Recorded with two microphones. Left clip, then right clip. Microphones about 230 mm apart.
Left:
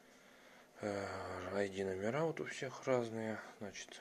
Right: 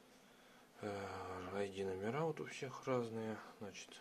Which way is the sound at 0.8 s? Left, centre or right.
Centre.